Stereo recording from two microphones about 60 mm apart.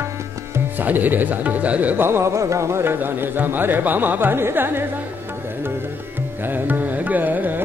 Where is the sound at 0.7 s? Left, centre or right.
Right.